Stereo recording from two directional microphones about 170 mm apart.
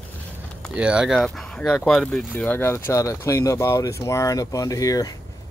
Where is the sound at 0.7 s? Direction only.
5° right (ahead or behind).